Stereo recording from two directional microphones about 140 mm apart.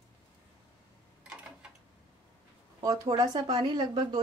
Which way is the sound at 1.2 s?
5° right (ahead or behind).